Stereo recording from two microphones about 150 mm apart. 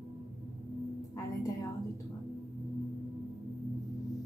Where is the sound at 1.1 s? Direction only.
25° left (ahead or behind).